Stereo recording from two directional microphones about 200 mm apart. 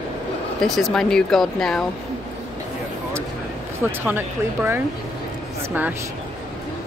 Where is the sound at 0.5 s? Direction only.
Centre (ahead or behind).